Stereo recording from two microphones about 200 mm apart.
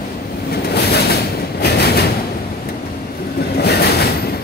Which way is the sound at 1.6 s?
55° left (ahead or behind).